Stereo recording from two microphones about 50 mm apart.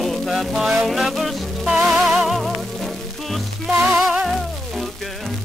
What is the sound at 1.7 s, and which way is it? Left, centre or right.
Music, centre.